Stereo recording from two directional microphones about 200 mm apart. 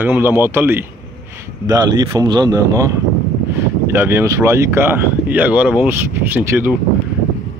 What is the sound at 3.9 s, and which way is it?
Speech, 10° right (ahead or behind).